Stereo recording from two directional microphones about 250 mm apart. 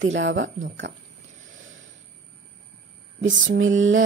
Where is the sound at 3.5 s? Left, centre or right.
Right.